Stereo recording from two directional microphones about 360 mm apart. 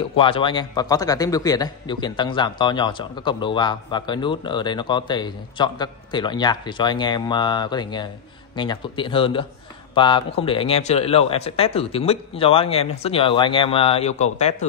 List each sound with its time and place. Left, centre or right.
0.1 s a man's voice: centre